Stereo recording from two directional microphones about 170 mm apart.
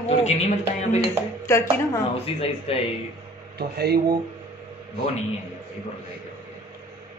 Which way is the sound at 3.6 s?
70° right (ahead or behind).